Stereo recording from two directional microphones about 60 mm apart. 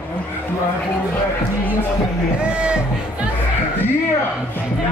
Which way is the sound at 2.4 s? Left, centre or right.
Centre.